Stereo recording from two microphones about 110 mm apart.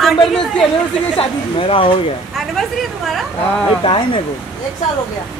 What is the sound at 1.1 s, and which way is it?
Speech, 55° left (ahead or behind).